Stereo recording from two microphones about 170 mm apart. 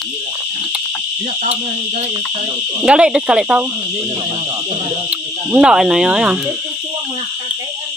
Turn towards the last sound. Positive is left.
turn(degrees=-5)  # may be behind; listen again after turning